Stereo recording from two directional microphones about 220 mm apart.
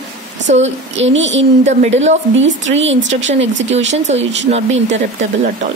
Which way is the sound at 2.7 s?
55° right (ahead or behind).